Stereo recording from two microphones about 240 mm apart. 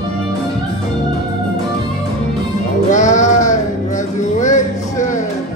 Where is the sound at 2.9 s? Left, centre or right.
Left.